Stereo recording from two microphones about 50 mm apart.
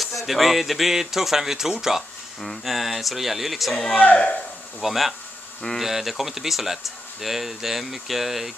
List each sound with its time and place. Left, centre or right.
0.0 s speech: centre
2.4 s speech: centre
4.1 s speech: left
4.7 s speech: centre